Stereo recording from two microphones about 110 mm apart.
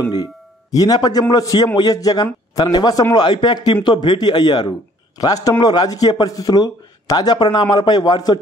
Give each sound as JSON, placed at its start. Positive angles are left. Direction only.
{"t": 0.0, "sound": "a man's voice", "side_deg": 35}